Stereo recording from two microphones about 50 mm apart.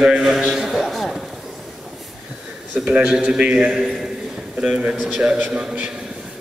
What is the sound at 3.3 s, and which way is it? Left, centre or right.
A man's voice, centre.